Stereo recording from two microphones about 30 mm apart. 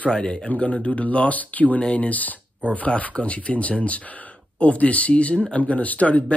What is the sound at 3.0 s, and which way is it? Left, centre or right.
Speech, left.